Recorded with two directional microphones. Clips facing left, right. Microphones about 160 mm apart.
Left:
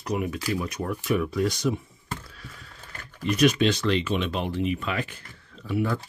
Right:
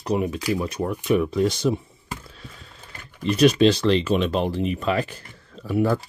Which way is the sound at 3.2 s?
30° right (ahead or behind).